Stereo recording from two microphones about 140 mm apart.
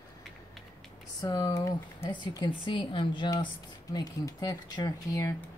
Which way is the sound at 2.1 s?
35° left (ahead or behind).